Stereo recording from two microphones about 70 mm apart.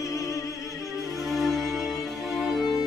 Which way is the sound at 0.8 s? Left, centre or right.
Centre.